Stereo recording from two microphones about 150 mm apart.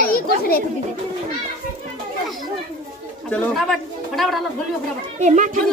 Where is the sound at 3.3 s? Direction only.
5° left (ahead or behind).